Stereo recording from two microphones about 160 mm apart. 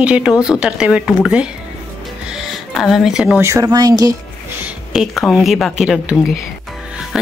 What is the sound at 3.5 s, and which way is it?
Speech, 20° right (ahead or behind).